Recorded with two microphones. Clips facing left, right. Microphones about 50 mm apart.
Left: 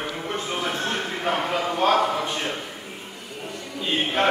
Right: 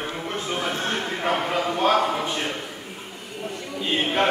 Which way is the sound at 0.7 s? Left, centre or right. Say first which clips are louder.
Even; centre.